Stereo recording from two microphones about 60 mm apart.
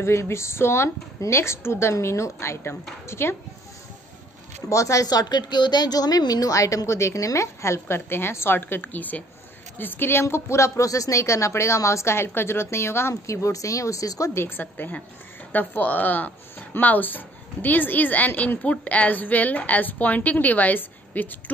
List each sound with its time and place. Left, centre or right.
0.0 s a woman's voice: left
4.6 s a woman's voice: left
5.9 s a woman's voice: left
10.2 s a woman's voice: left
13.1 s a woman's voice: left
14.3 s a woman's voice: left